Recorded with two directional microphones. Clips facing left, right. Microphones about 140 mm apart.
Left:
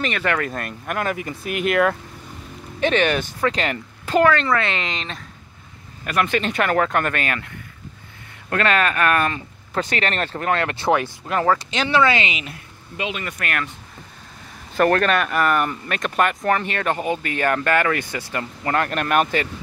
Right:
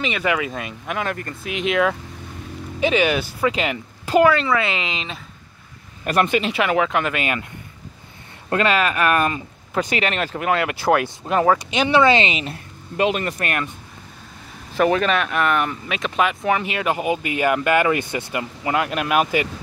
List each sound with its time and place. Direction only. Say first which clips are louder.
0.0 s speech: right 1 dB; 5° right (ahead or behind)
6.2 s speech: right 1 dB; 10° right (ahead or behind)
8.5 s speech: right 1 dB; 15° right (ahead or behind)
11.2 s speech: right 3 dB; 15° right (ahead or behind)
12.9 s speech: right 8 dB; 45° right (ahead or behind)
13.4 s speech: right 2 dB; 20° right (ahead or behind)
14.8 s speech: even; centre (ahead or behind)